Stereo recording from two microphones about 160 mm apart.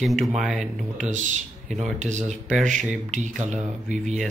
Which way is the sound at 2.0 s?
45° right (ahead or behind).